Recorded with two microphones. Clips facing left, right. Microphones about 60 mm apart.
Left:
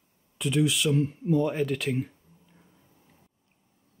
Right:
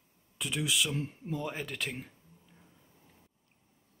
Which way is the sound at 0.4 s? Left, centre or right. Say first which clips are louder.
Left 7 dB; centre.